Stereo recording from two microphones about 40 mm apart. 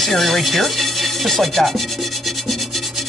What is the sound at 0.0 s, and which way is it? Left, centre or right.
Rub, centre.